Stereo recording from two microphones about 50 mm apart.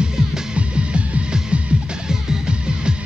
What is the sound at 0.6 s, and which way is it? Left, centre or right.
Music, right.